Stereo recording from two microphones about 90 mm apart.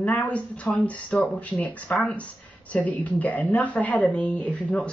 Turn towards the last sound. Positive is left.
turn(degrees=15)  # may be behind; listen again after turning